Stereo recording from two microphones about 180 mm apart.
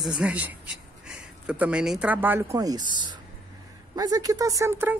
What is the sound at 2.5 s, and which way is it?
Speech, 20° right (ahead or behind).